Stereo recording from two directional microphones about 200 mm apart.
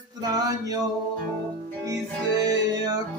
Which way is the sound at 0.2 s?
20° right (ahead or behind).